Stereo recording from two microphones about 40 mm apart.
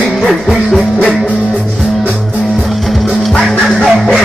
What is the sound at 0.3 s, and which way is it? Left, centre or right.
Music, centre.